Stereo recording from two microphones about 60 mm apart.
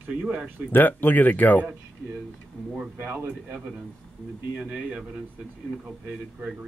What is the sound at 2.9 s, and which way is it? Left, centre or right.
Speech, right.